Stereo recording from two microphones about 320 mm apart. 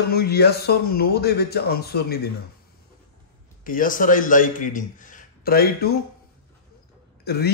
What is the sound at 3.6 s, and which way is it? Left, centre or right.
Speech, left.